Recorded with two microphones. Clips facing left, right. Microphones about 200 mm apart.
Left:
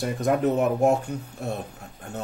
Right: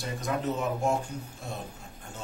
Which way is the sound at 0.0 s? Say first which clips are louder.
Left 8 dB; 60° left (ahead or behind).